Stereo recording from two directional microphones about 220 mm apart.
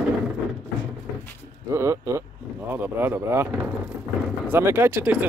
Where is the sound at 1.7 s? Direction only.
15° right (ahead or behind).